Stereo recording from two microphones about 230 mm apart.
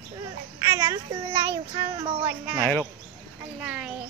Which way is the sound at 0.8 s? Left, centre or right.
Centre.